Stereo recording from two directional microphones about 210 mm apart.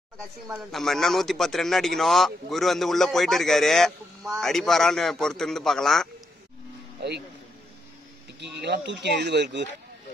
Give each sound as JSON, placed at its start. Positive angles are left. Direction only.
{"t": 0.5, "sound": "a man's voice", "side_deg": 0}
{"t": 8.4, "sound": "speech", "side_deg": -55}